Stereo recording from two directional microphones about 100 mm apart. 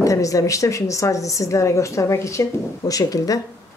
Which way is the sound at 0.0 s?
35° left (ahead or behind).